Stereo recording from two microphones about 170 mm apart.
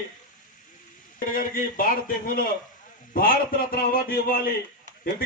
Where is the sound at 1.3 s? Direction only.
55° left (ahead or behind).